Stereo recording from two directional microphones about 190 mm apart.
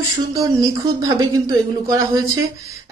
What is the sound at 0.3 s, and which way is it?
A woman's voice, 20° right (ahead or behind).